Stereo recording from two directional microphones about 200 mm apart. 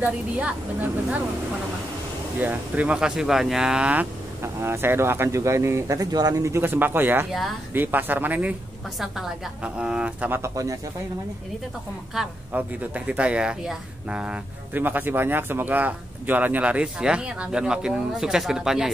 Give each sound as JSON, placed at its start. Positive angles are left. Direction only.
{"t": 0.0, "sound": "speech", "side_deg": -5}
{"t": 2.4, "sound": "speech", "side_deg": -10}
{"t": 12.2, "sound": "speech", "side_deg": -5}